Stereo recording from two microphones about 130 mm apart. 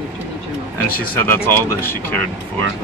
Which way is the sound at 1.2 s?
20° left (ahead or behind).